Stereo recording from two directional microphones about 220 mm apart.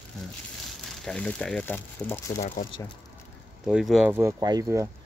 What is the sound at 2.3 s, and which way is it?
Speech, 35° left (ahead or behind).